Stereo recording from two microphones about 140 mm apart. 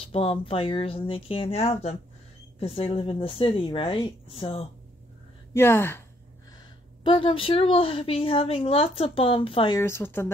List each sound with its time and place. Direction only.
0.0 s a woman's voice: 40° left (ahead or behind)
5.5 s speech: 15° left (ahead or behind)
7.0 s a woman's voice: 35° left (ahead or behind)
9.8 s speech: 15° left (ahead or behind)